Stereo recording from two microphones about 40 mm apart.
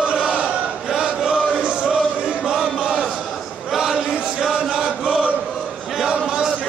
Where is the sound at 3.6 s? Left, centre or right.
Centre.